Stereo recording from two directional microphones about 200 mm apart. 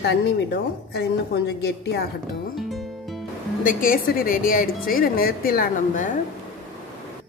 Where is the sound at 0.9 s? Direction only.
55° left (ahead or behind).